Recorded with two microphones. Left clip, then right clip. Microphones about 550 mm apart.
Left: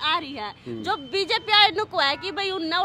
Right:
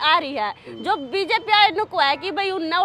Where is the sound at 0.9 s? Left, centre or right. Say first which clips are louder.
Right 3 dB; centre.